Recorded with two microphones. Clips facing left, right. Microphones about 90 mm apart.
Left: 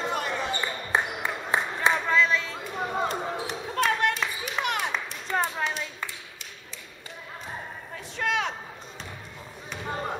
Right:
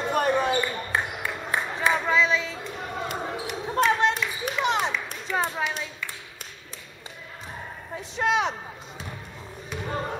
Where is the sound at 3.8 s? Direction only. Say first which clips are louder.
Right 2 dB; 20° right (ahead or behind).